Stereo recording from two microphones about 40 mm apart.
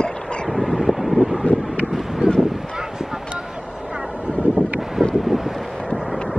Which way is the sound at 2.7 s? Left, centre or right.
Centre.